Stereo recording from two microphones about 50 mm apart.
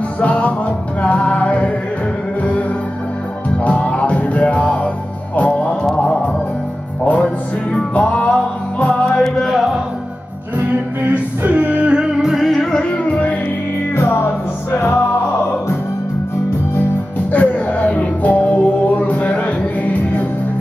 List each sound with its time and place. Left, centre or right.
0.2 s music: left
3.5 s music: left
9.2 s music: centre
10.6 s music: right; by 12.4 s centre
12.4 s music: centre
12.8 s music: left
14.1 s music: left
17.3 s music: left